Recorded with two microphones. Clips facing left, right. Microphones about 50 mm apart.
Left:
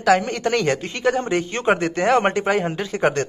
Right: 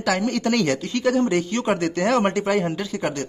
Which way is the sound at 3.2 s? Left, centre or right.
Left.